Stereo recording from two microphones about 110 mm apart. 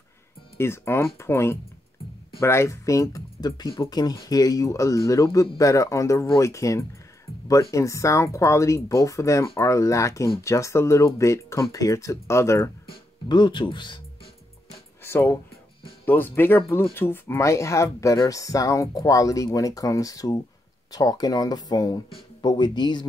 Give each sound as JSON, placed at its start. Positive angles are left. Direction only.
{"t": 0.6, "sound": "speech", "side_deg": 25}
{"t": 13.3, "sound": "speech", "side_deg": 45}
{"t": 15.0, "sound": "speech", "side_deg": 20}